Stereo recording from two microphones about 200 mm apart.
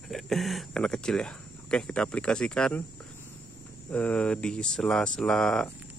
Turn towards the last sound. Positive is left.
turn(degrees=5)  # may be behind; listen again after turning